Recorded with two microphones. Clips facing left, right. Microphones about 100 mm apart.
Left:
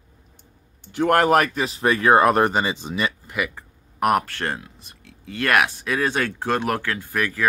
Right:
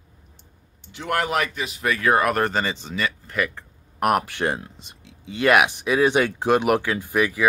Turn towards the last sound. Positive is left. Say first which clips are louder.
# right 3 dB
turn(degrees=-10)  # may be behind; listen again after turning